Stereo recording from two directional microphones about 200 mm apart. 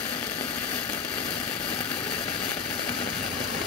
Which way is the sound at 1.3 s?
10° left (ahead or behind).